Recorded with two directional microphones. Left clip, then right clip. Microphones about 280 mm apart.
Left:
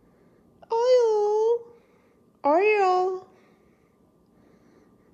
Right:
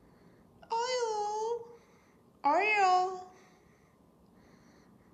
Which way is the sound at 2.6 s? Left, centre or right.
Left.